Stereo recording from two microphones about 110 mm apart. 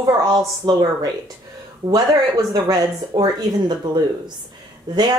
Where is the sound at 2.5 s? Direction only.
35° right (ahead or behind).